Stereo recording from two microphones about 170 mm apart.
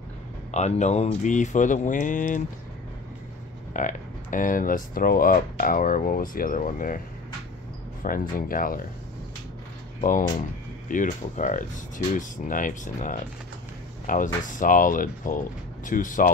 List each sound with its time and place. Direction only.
0.5 s speech: 40° left (ahead or behind)
3.7 s speech: 50° left (ahead or behind)
8.0 s speech: 55° left (ahead or behind)
9.9 s speech: 50° left (ahead or behind)